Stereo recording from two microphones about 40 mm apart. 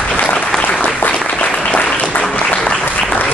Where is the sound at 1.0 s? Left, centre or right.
Left.